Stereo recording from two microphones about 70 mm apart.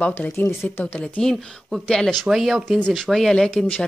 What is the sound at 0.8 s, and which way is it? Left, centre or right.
Speech, centre.